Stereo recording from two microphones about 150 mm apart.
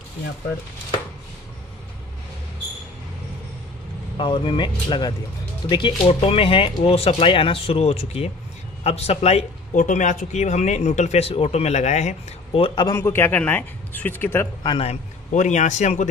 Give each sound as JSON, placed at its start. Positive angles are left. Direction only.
{"t": 4.2, "sound": "speech", "side_deg": 30}
{"t": 12.8, "sound": "a man's voice", "side_deg": 15}
{"t": 14.6, "sound": "speech", "side_deg": 30}
{"t": 14.9, "sound": "speech", "side_deg": 55}